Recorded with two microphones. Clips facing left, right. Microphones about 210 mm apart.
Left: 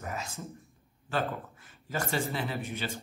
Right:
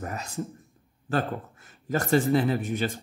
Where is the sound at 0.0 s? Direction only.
45° right (ahead or behind).